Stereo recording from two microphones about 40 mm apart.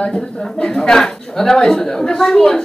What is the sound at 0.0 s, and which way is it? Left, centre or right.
Speech, left.